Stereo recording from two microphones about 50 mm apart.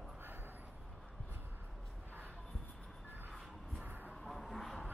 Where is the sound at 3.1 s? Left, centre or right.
Right.